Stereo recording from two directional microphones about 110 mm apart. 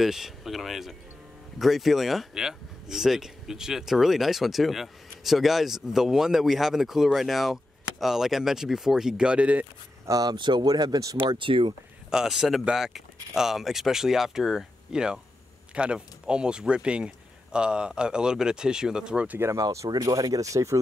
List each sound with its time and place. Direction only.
0.0 s speech: centre (ahead or behind)
10.0 s speech: 35° right (ahead or behind)
11.1 s speech: 50° right (ahead or behind)
12.1 s speech: 5° right (ahead or behind); by 19.6 s 20° right (ahead or behind)
19.6 s speech: 30° right (ahead or behind)